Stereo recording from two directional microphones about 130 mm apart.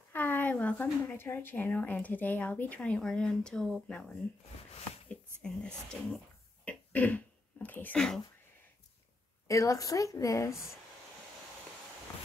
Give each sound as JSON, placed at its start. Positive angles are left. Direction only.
{"t": 0.1, "sound": "speech", "side_deg": 15}
{"t": 5.4, "sound": "speech", "side_deg": 5}
{"t": 9.5, "sound": "a woman's voice", "side_deg": 25}